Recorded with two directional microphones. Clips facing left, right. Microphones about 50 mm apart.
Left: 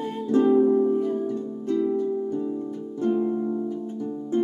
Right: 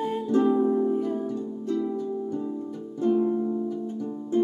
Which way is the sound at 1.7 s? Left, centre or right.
Left.